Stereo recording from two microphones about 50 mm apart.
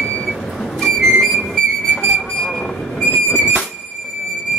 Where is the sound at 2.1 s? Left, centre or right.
Centre.